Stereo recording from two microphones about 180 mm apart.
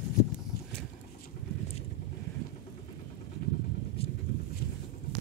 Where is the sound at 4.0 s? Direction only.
35° left (ahead or behind).